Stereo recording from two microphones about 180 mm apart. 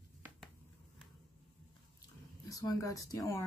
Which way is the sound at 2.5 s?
20° left (ahead or behind).